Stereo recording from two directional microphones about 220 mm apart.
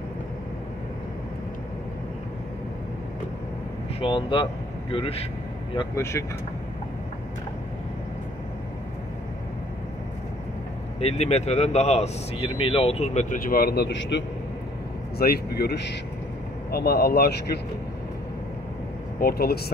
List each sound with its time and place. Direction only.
4.0 s speech: 20° left (ahead or behind)
5.8 s speech: 10° left (ahead or behind)
11.0 s speech: 30° left (ahead or behind); by 17.6 s 45° left (ahead or behind)
19.1 s speech: 45° left (ahead or behind)